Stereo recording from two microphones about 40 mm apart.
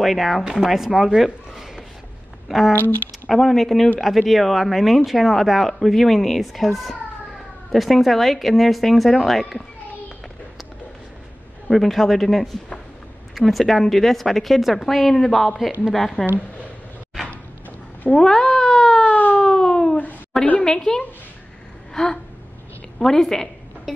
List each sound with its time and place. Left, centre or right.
0.0 s a woman's voice: centre
11.7 s a woman's voice: centre
13.5 s a woman's voice: centre
16.2 s speech: left
18.1 s speech: centre
19.0 s siren: left
19.4 s a sound: centre
20.6 s a woman's voice: centre
21.9 s gasp: centre
22.9 s a woman's voice: centre